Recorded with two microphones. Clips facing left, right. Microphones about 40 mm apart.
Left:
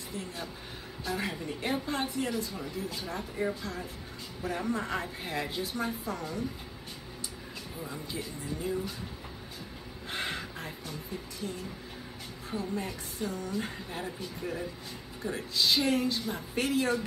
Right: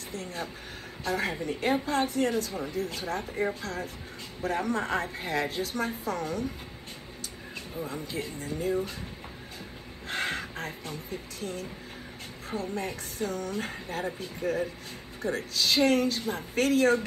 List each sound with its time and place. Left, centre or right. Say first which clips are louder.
0.1 s a woman's voice: right 3 dB; right
7.8 s a woman's voice: right 4 dB; right
10.0 s a woman's voice: right 4 dB; right